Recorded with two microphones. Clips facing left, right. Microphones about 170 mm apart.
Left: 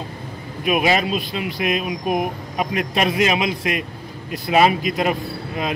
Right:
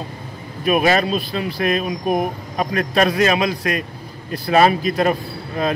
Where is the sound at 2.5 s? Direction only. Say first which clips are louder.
Right 3 dB; 15° left (ahead or behind).